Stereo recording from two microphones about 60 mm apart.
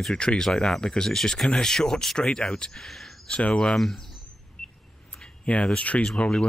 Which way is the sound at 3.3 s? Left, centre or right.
Centre.